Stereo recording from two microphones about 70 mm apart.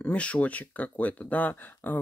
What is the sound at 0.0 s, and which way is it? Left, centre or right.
Speech, centre.